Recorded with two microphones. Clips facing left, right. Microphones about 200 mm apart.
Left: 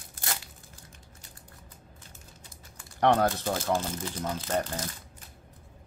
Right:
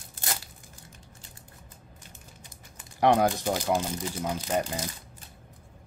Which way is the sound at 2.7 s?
15° right (ahead or behind).